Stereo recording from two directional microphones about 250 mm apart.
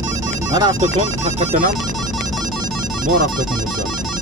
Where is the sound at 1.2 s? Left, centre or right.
Right.